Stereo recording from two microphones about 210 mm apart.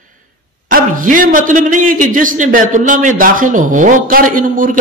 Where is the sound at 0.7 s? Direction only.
40° right (ahead or behind).